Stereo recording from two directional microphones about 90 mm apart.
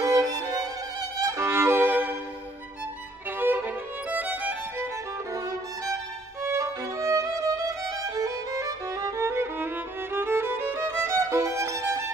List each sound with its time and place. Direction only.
0.0 s violin: 45° right (ahead or behind)
1.2 s violin: 30° right (ahead or behind)
3.3 s violin: 20° right (ahead or behind)
6.4 s violin: 35° right (ahead or behind)
10.1 s music: 25° right (ahead or behind)